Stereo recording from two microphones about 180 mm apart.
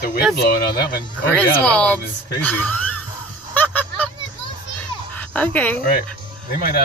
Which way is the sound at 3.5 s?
10° left (ahead or behind).